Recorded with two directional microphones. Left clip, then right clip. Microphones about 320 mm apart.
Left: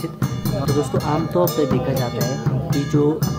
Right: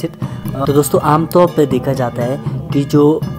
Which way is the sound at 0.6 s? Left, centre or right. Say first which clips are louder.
Right 9 dB; centre.